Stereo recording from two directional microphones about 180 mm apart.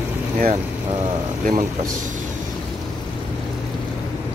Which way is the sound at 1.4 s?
45° right (ahead or behind).